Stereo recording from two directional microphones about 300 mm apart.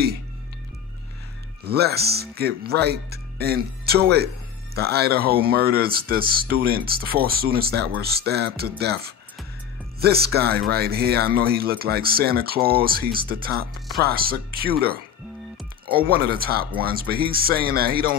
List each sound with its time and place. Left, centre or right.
1.6 s speech: right